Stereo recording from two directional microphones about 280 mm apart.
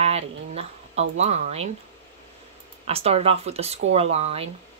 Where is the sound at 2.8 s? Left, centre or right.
Right.